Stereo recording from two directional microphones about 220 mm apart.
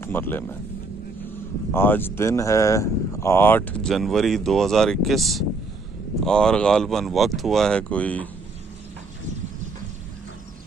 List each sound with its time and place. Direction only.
0.0 s speech: 10° left (ahead or behind)
1.7 s speech: 10° left (ahead or behind)